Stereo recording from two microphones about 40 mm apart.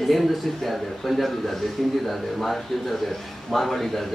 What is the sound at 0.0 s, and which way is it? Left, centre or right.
A man's voice, centre.